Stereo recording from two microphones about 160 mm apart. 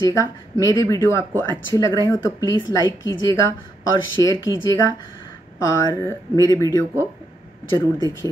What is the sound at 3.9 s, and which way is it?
Speech, 20° left (ahead or behind).